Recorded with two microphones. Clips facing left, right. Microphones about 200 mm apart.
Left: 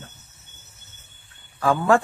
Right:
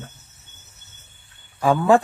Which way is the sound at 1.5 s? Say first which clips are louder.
Right 3 dB; 15° right (ahead or behind).